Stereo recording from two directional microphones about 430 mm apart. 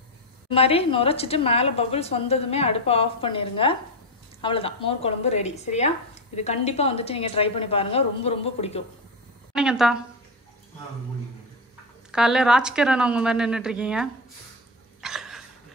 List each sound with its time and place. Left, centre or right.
0.5 s a woman's voice: centre
9.6 s a woman's voice: centre
12.1 s a woman's voice: centre
15.0 s dog: centre